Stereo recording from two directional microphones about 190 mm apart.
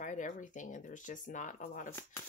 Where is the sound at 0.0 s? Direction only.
40° left (ahead or behind).